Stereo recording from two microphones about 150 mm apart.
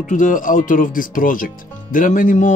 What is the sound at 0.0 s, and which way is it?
Speech, 65° left (ahead or behind).